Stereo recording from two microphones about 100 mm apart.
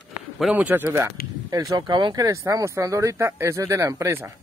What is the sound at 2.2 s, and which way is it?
Speech, 35° right (ahead or behind).